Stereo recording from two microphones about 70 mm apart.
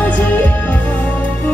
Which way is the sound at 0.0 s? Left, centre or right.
Left.